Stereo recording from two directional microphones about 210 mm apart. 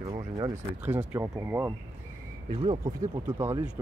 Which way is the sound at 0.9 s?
10° right (ahead or behind).